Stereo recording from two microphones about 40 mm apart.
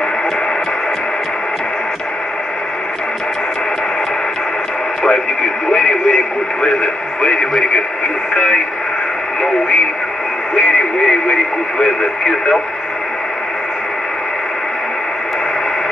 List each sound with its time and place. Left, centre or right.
5.7 s speech: centre
10.5 s radio: centre
11.8 s speech: centre